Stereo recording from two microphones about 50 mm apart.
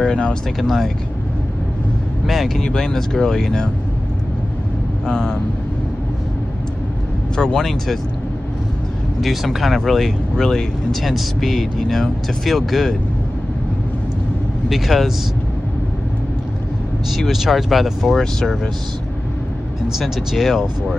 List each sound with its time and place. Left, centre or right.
0.0 s speech: centre
0.6 s speech: centre
2.2 s speech: centre
5.0 s speech: centre
7.5 s speech: centre
9.2 s speech: centre
14.7 s speech: centre
17.3 s speech: centre
20.0 s speech: centre